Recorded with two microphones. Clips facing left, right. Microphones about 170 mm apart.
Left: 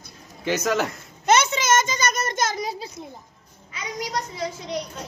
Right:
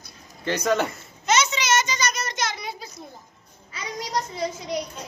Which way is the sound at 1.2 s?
55° left (ahead or behind).